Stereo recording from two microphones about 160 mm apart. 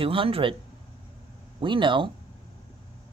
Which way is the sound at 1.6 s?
30° right (ahead or behind).